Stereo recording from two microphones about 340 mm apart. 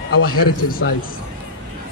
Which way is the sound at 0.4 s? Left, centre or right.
Left.